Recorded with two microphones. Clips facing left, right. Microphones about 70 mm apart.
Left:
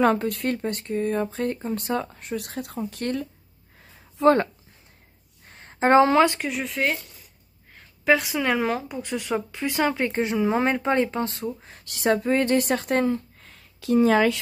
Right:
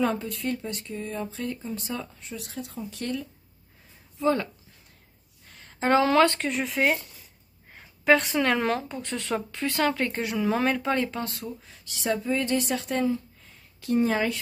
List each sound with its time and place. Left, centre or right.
0.0 s speech: left
4.2 s speech: left
5.5 s a woman's voice: left; by 6.4 s centre
6.4 s speech: centre; by 11.5 s left
11.6 s speech: left